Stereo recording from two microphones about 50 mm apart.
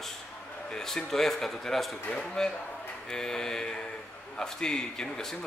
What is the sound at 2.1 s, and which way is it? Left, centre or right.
Speech, centre.